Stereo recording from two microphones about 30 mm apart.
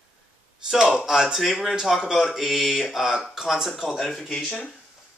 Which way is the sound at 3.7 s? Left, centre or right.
Centre.